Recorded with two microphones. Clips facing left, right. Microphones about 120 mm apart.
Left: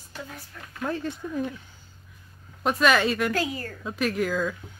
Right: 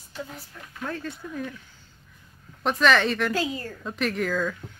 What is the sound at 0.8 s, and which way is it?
Speech, 20° left (ahead or behind).